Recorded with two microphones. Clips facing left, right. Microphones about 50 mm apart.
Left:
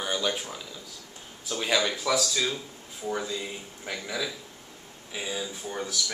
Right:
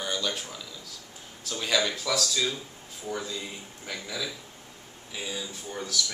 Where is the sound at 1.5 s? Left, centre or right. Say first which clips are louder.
Left 1 dB; centre.